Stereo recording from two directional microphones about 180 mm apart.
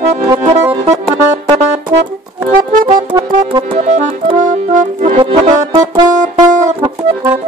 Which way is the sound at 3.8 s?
45° right (ahead or behind).